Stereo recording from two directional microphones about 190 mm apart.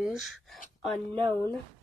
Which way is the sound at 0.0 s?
Centre (ahead or behind).